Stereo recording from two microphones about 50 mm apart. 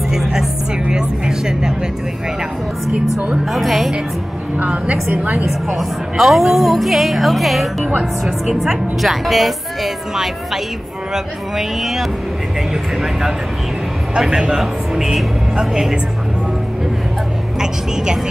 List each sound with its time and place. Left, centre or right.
0.1 s speech: centre
3.5 s a woman's voice: centre
4.6 s a woman's voice: right
5.8 s a woman's voice: centre
14.3 s speech: centre
17.6 s speech: centre